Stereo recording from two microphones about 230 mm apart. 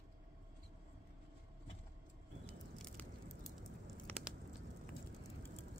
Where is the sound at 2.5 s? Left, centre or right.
Centre.